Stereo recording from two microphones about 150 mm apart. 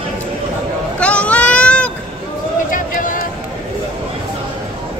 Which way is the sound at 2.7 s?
65° left (ahead or behind).